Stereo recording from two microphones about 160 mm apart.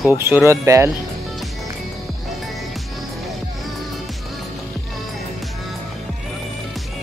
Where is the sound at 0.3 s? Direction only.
15° right (ahead or behind).